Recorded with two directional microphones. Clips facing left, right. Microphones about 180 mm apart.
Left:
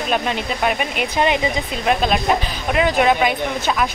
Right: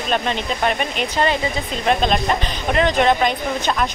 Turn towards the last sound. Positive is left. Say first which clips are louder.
# even
turn(degrees=5)  # may be behind; listen again after turning